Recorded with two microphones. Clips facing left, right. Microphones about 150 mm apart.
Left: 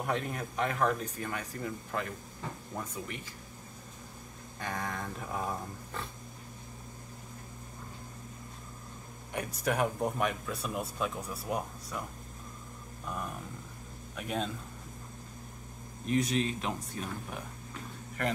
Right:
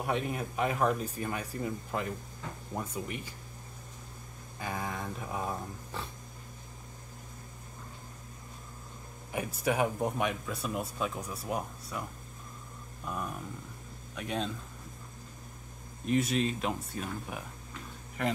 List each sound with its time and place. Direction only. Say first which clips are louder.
0.0 s speech: right 1 dB; 5° right (ahead or behind)
4.6 s speech: even; 5° right (ahead or behind)
9.3 s speech: right 1 dB; 5° right (ahead or behind)
13.0 s speech: right 2 dB; centre (ahead or behind)
16.1 s speech: right 1 dB; centre (ahead or behind)